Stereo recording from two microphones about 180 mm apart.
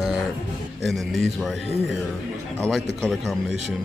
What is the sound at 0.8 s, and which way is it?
Speech, centre (ahead or behind).